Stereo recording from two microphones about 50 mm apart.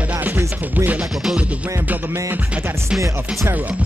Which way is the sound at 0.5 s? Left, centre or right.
Right.